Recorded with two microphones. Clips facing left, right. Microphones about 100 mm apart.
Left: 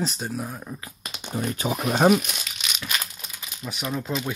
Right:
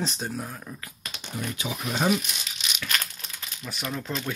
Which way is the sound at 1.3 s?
45° left (ahead or behind).